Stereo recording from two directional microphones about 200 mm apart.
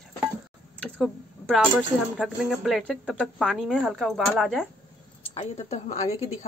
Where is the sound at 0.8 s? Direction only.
Centre (ahead or behind).